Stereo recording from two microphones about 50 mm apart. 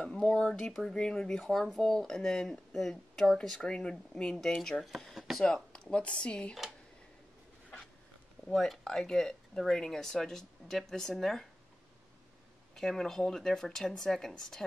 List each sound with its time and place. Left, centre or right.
0.2 s speech: centre
3.6 s speech: centre
5.4 s speech: centre
8.5 s speech: centre
12.7 s speech: centre